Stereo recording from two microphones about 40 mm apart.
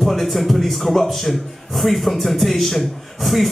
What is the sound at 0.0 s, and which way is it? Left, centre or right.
A man's voice, centre.